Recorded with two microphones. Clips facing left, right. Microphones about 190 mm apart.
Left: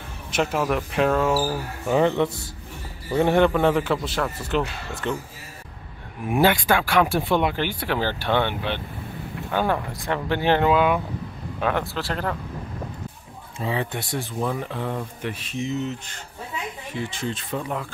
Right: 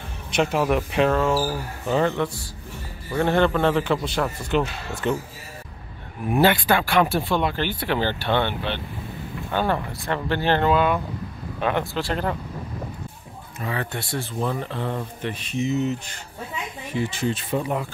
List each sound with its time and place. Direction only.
0.3 s speech: 5° left (ahead or behind)
6.2 s speech: 10° left (ahead or behind)
13.6 s speech: 20° left (ahead or behind); by 15.9 s 5° right (ahead or behind)
17.1 s speech: 5° right (ahead or behind)